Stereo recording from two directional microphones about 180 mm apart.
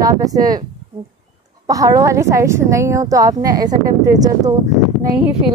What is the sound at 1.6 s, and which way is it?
A woman's voice, 20° right (ahead or behind).